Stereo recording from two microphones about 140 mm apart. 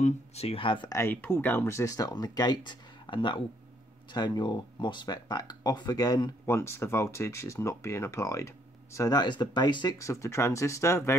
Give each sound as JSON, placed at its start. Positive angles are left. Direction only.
{"t": 0.0, "sound": "speech", "side_deg": 50}
{"t": 0.9, "sound": "speech", "side_deg": 15}